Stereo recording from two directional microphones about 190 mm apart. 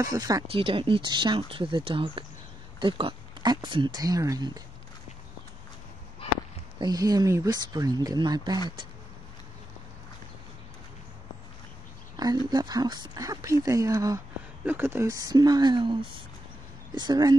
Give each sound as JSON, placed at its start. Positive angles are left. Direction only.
{"t": 0.0, "sound": "speech", "side_deg": -20}
{"t": 0.5, "sound": "speech", "side_deg": -30}
{"t": 6.8, "sound": "speech", "side_deg": -20}
{"t": 12.2, "sound": "speech", "side_deg": -20}